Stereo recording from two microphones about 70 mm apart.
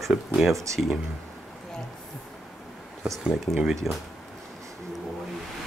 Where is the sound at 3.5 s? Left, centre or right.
Centre.